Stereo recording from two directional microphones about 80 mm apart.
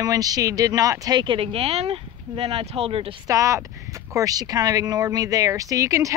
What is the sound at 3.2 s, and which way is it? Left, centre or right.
Speech, right.